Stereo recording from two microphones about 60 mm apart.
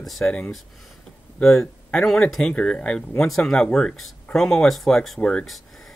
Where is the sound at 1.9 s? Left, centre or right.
Centre.